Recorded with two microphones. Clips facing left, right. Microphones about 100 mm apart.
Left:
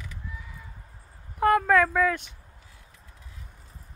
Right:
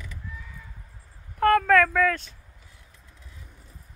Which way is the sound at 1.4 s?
15° left (ahead or behind).